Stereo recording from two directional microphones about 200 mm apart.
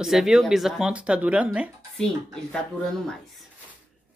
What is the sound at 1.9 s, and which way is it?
Speech, 5° left (ahead or behind).